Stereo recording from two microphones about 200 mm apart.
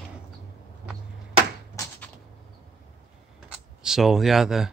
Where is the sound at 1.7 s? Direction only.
15° left (ahead or behind).